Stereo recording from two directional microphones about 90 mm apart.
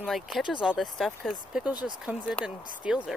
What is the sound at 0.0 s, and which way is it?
Speech, centre (ahead or behind).